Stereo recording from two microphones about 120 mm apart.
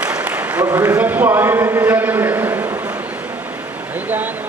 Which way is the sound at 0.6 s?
25° right (ahead or behind).